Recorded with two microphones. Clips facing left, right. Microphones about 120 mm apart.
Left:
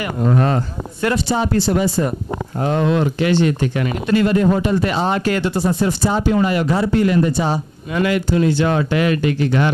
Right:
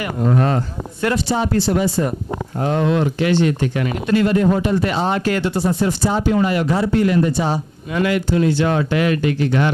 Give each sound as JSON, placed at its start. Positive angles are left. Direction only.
{"t": 0.2, "sound": "speech", "side_deg": 20}